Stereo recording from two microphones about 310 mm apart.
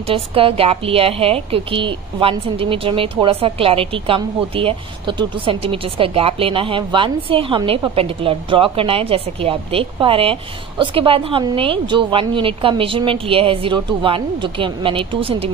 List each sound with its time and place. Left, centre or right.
0.1 s a woman's voice: centre